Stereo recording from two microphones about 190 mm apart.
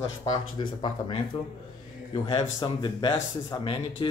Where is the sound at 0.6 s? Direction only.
25° left (ahead or behind).